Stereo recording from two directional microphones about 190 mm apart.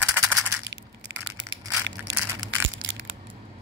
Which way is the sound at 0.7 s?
70° right (ahead or behind).